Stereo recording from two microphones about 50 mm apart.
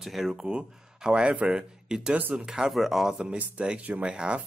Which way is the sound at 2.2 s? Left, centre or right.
Right.